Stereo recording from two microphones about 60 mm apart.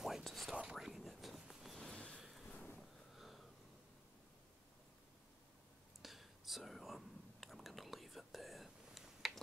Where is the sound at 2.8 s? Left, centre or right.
Centre.